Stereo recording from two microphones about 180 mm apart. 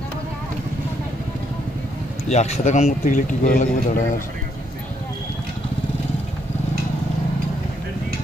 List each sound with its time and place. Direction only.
2.2 s speech: 40° left (ahead or behind)